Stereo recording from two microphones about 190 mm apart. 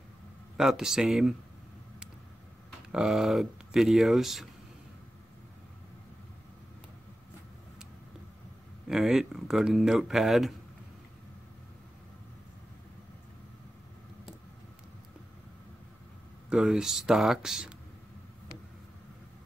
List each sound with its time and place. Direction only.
0.6 s speech: 5° right (ahead or behind)
2.9 s speech: 5° right (ahead or behind)
8.8 s speech: centre (ahead or behind)
16.4 s speech: 5° right (ahead or behind)